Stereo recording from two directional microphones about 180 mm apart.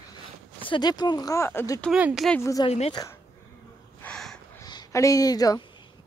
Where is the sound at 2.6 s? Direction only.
35° left (ahead or behind).